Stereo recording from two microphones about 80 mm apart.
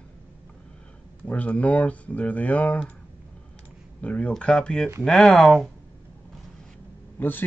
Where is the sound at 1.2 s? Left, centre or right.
Centre.